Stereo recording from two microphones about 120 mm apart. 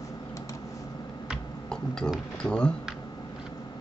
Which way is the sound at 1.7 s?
5° left (ahead or behind).